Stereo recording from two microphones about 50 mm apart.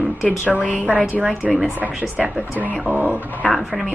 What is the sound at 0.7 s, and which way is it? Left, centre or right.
Speech, right.